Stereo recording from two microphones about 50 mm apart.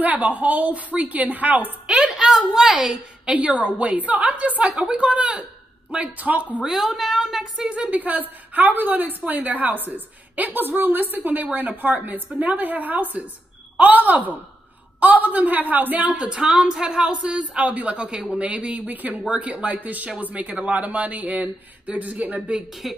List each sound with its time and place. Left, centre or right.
0.0 s a woman's voice: right
2.0 s a sound: centre
3.3 s a woman's voice: right
6.6 s a woman's voice: centre
7.5 s speech: centre
7.9 s a woman's voice: right
18.9 s a woman's voice: right
22.8 s a woman's voice: centre